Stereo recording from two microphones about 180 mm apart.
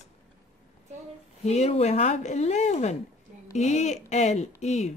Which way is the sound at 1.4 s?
35° left (ahead or behind).